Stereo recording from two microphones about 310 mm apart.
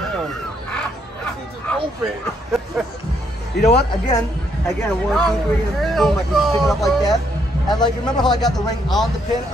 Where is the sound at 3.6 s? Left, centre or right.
Left.